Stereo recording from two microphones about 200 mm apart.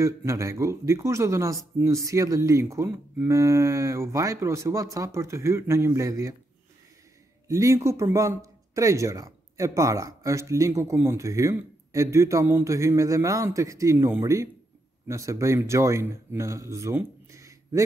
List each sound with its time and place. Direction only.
0.0 s speech: 15° right (ahead or behind)
7.4 s speech: 15° right (ahead or behind)